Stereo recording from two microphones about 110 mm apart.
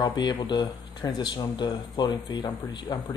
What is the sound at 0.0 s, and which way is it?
Speech, 40° left (ahead or behind).